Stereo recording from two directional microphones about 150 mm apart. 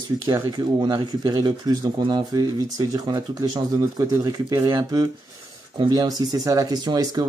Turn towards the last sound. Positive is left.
turn(degrees=-25)  # may be behind; listen again after turning